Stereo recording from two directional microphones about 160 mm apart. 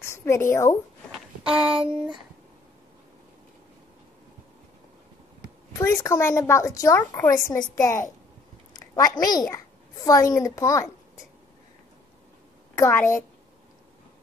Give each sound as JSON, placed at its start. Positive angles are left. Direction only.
{"t": 0.0, "sound": "a woman's voice", "side_deg": 15}
{"t": 1.5, "sound": "speech", "side_deg": -5}
{"t": 5.7, "sound": "a woman's voice", "side_deg": 20}
{"t": 12.7, "sound": "a woman's voice", "side_deg": 15}